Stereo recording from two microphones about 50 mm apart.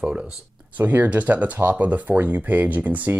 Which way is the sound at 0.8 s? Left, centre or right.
Right.